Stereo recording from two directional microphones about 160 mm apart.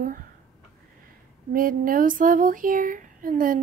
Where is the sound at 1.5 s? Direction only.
60° right (ahead or behind).